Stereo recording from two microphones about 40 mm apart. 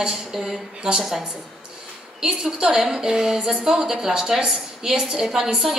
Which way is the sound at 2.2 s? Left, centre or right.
Centre.